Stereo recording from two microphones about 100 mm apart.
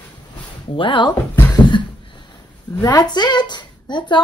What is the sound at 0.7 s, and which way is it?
Speech, 60° left (ahead or behind).